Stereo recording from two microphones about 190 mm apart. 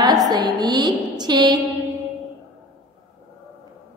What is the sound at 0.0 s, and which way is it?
A woman's voice, 20° right (ahead or behind).